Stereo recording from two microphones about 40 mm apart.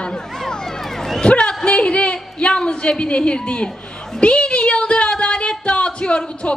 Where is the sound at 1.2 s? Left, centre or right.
Left.